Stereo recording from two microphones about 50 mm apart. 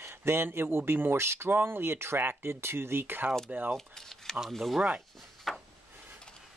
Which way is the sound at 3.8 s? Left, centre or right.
Centre.